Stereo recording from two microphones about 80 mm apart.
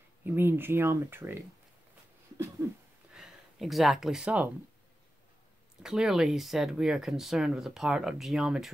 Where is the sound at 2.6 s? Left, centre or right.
Right.